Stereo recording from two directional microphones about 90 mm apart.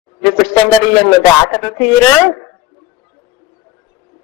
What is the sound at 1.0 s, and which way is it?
A man's voice, 20° left (ahead or behind).